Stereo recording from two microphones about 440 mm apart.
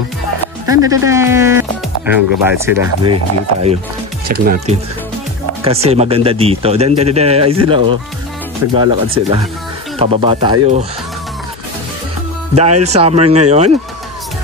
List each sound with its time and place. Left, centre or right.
0.7 s speech: centre
4.3 s speech: centre
12.8 s speech: centre